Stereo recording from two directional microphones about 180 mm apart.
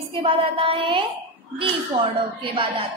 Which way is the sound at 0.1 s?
30° right (ahead or behind).